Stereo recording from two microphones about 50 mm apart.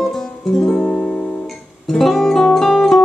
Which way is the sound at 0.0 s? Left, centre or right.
Centre.